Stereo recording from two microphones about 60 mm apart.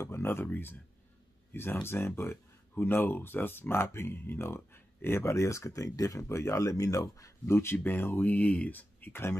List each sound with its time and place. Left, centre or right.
0.0 s speech: left